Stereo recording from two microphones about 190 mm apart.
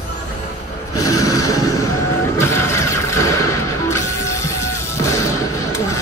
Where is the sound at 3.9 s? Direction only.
15° left (ahead or behind).